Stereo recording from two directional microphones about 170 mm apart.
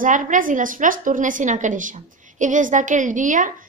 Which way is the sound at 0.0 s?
50° right (ahead or behind).